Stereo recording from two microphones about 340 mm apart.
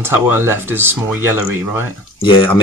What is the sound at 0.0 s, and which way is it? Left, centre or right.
Speech, centre.